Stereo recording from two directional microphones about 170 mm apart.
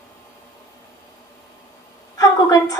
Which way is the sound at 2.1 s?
20° left (ahead or behind).